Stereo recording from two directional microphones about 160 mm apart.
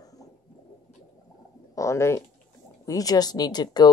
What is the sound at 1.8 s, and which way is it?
Speech, 20° left (ahead or behind).